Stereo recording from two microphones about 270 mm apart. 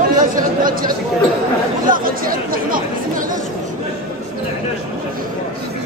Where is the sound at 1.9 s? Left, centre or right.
Right.